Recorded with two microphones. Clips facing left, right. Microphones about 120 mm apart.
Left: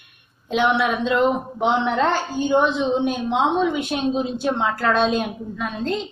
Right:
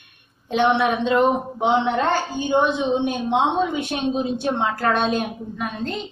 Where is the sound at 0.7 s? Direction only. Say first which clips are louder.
Right 2 dB; 25° right (ahead or behind).